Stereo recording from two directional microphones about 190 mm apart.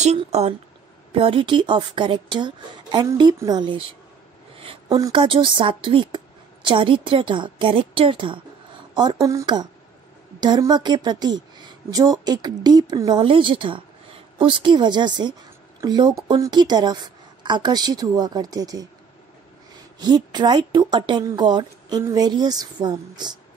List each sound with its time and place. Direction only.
0.0 s speech: 35° right (ahead or behind); by 18.9 s 20° right (ahead or behind)
20.0 s speech: 20° right (ahead or behind)